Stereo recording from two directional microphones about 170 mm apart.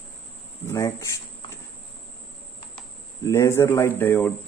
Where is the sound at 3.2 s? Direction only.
15° left (ahead or behind).